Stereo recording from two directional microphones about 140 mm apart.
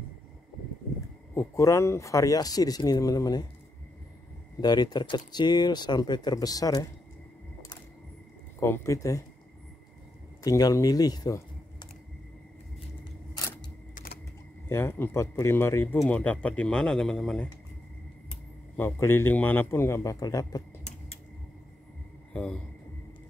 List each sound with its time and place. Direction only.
1.3 s speech: 20° left (ahead or behind)
4.6 s speech: 30° left (ahead or behind)
8.5 s speech: 20° left (ahead or behind)
10.4 s speech: 25° left (ahead or behind)
13.9 s a sound: 90° left
14.7 s a man's voice: 15° left (ahead or behind)
18.8 s a man's voice: 15° left (ahead or behind)
22.3 s a sound: 5° left (ahead or behind)